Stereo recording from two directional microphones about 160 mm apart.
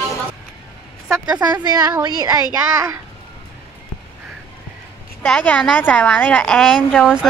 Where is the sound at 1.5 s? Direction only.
25° right (ahead or behind).